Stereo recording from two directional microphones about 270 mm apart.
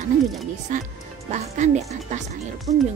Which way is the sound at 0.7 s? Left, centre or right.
Right.